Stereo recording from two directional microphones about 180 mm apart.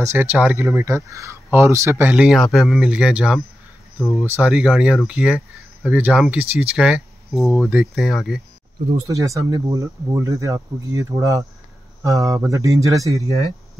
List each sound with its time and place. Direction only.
0.0 s speech: 15° right (ahead or behind)
9.0 s speech: 20° right (ahead or behind)